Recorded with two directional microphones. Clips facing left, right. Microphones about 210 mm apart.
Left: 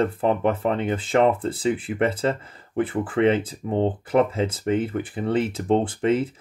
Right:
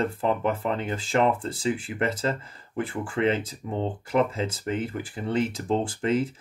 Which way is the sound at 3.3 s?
30° left (ahead or behind).